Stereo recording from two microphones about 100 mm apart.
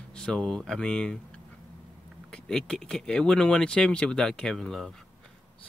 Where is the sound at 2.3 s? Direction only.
5° left (ahead or behind).